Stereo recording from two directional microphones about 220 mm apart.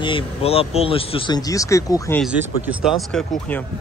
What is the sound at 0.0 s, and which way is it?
Speech, 25° left (ahead or behind).